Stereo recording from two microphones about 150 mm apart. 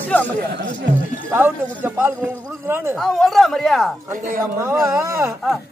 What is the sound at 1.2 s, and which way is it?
Speech, 15° right (ahead or behind).